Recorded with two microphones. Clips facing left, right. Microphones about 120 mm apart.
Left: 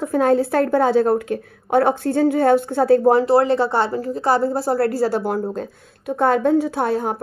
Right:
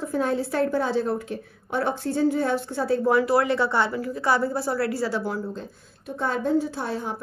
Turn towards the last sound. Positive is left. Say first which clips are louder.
# left 8 dB
turn(degrees=55)  # may be behind; listen again after turning